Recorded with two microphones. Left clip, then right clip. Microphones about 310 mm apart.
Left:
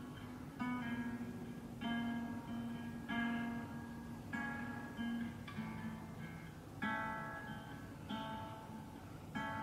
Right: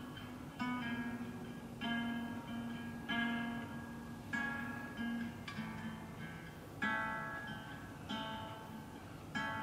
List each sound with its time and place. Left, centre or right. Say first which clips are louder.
0.6 s music: right 2 dB; centre
6.8 s music: right 3 dB; centre